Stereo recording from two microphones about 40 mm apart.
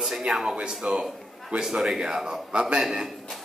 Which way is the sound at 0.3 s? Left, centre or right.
Centre.